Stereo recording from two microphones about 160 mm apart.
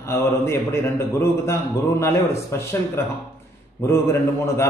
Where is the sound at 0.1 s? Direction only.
15° left (ahead or behind).